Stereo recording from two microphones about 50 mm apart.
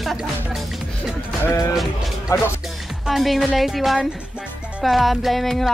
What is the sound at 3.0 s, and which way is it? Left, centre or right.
Speech, centre.